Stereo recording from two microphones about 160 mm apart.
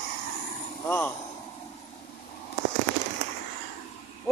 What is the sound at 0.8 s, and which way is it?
Speech, 10° left (ahead or behind).